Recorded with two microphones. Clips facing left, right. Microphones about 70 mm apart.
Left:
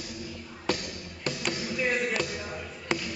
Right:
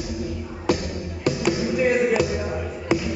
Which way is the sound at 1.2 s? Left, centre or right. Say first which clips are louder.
Right 10 dB; centre.